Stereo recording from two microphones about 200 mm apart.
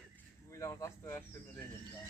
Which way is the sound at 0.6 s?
15° left (ahead or behind).